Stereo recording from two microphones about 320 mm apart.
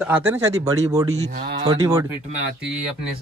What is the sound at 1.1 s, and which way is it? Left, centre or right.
Speech, right.